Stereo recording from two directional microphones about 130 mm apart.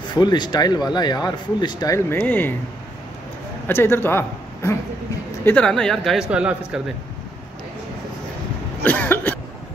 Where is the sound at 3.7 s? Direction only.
15° left (ahead or behind).